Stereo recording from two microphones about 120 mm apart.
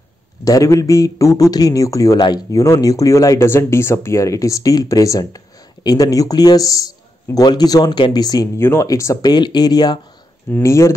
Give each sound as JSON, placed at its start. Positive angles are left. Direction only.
{"t": 0.5, "sound": "a man's voice", "side_deg": 25}
{"t": 8.5, "sound": "speech", "side_deg": 20}
{"t": 9.3, "sound": "a man's voice", "side_deg": 35}
{"t": 10.5, "sound": "speech", "side_deg": 25}